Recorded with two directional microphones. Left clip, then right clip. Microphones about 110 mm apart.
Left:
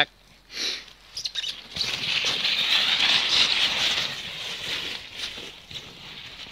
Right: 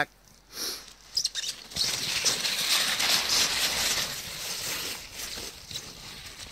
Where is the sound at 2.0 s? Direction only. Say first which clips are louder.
Left 4 dB; 15° right (ahead or behind).